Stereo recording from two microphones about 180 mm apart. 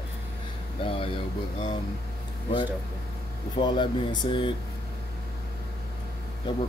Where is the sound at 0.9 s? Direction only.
30° left (ahead or behind).